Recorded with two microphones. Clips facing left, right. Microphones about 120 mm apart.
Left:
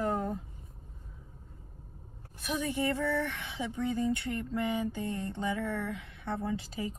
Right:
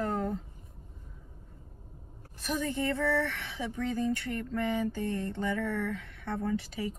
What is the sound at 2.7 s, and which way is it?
Speech, 25° left (ahead or behind).